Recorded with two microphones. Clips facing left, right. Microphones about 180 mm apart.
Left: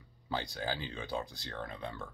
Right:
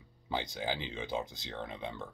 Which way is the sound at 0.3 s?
20° right (ahead or behind).